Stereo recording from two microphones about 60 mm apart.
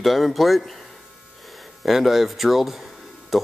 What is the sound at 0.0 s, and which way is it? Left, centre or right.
Speech, centre.